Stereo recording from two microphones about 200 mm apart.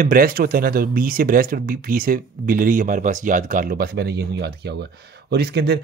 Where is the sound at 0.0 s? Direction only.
45° right (ahead or behind).